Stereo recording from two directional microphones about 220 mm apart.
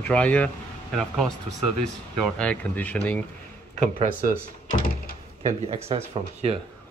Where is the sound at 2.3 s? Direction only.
5° left (ahead or behind).